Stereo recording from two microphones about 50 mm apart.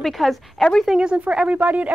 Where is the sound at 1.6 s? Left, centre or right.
Right.